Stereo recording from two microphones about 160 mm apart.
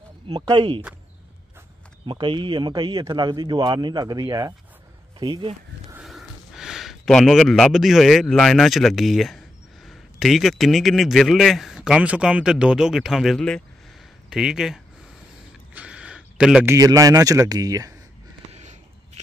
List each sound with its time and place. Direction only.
0.3 s speech: 30° right (ahead or behind)
2.0 s a man's voice: 30° right (ahead or behind)
5.9 s a man's voice: centre (ahead or behind)
15.7 s a sound: 5° right (ahead or behind)
16.6 s a man's voice: 20° right (ahead or behind)
18.5 s a sound: 45° right (ahead or behind)